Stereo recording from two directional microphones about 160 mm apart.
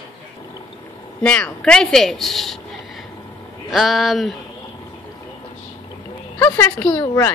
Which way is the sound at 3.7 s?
Centre (ahead or behind).